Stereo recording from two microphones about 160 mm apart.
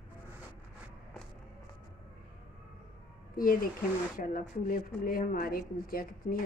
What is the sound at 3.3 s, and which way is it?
Speech, 60° left (ahead or behind).